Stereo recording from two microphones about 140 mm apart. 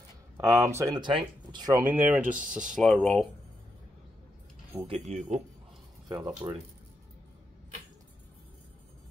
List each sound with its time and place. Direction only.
0.4 s speech: 20° right (ahead or behind)
1.7 s speech: 15° right (ahead or behind)
2.7 s speech: 5° left (ahead or behind)
4.7 s speech: 45° right (ahead or behind)
6.0 s speech: 30° right (ahead or behind)